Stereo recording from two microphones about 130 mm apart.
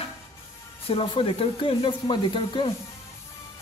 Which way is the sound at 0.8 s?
45° left (ahead or behind).